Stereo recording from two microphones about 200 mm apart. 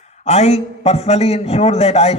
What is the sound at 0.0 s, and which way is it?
A man's voice, 35° left (ahead or behind).